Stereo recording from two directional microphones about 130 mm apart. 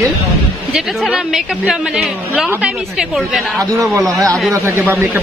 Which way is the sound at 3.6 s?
25° right (ahead or behind).